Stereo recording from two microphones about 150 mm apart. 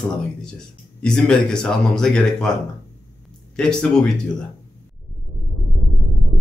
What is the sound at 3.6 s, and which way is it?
Speech, 5° left (ahead or behind).